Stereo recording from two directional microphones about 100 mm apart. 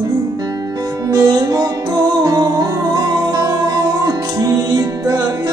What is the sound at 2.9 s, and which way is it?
Music, 40° right (ahead or behind).